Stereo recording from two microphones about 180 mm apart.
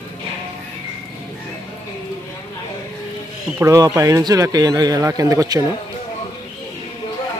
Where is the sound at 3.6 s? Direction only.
20° right (ahead or behind).